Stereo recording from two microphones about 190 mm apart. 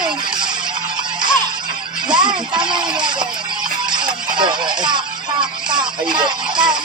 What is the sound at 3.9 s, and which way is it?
Music, 25° right (ahead or behind).